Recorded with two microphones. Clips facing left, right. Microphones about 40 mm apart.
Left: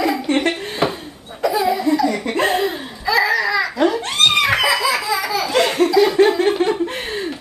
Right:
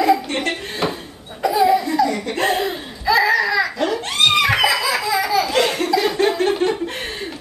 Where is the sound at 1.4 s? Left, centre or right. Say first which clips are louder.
Right 2 dB; centre.